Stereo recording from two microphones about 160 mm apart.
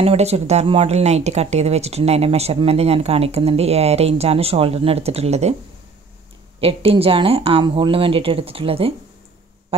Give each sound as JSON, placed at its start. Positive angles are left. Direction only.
{"t": 0.0, "sound": "speech", "side_deg": -40}
{"t": 6.6, "sound": "speech", "side_deg": -35}